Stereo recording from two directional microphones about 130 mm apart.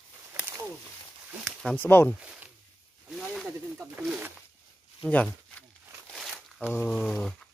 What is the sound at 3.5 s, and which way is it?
Speech, 10° right (ahead or behind).